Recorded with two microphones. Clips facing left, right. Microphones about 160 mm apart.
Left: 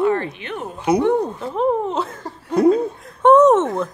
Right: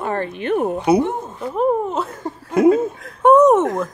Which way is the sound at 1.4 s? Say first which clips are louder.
Right 1 dB; 5° right (ahead or behind).